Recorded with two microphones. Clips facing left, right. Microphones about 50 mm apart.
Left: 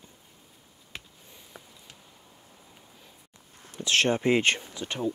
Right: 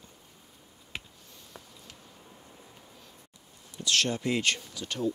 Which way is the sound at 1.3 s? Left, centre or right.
Centre.